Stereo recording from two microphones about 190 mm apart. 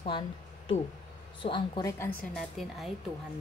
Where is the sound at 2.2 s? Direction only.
Centre (ahead or behind).